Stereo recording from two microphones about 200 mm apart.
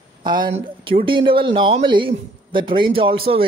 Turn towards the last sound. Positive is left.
turn(degrees=-25)  # may be behind; listen again after turning